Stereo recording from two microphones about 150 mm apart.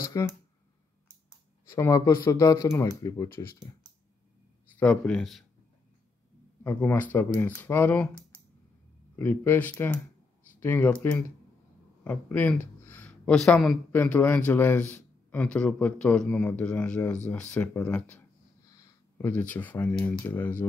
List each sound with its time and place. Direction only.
0.0 s a sound: 20° left (ahead or behind)
1.7 s speech: 20° left (ahead or behind)
4.7 s a man's voice: 5° left (ahead or behind)
6.6 s speech: 15° left (ahead or behind)
9.1 s speech: 15° left (ahead or behind)
12.0 s speech: 10° left (ahead or behind)
18.7 s a sound: 20° left (ahead or behind)
19.3 s speech: 10° left (ahead or behind)